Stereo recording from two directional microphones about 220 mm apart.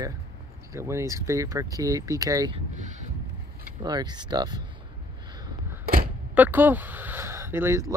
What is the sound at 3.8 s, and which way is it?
Speech, 20° right (ahead or behind).